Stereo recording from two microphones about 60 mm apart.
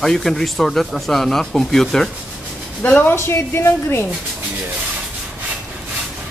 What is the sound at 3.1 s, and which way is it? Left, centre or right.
Speech, left.